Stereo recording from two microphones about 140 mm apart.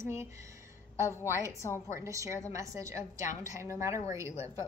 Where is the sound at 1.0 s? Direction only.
20° left (ahead or behind).